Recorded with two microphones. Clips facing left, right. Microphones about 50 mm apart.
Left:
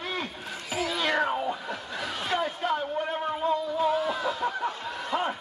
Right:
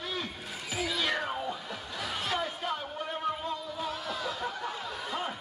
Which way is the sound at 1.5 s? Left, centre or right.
Left.